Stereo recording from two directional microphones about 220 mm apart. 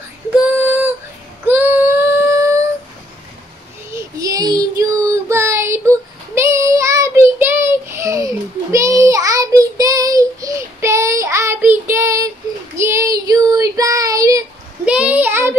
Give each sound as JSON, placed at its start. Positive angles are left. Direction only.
{"t": 0.5, "sound": "female singing", "side_deg": -10}
{"t": 1.5, "sound": "child singing", "side_deg": -10}
{"t": 3.9, "sound": "child singing", "side_deg": -15}